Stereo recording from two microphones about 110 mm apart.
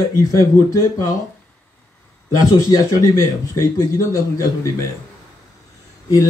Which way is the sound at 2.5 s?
30° left (ahead or behind).